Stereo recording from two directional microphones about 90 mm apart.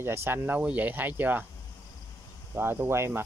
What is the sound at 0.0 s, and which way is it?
Speech, 25° right (ahead or behind).